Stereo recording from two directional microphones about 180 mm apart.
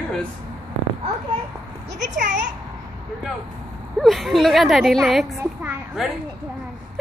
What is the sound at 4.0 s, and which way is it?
Speech, centre (ahead or behind).